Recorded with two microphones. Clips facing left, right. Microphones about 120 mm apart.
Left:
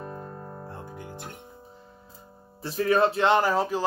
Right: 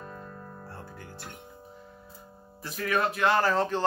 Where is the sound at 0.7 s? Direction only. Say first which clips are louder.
Left 4 dB; 20° left (ahead or behind).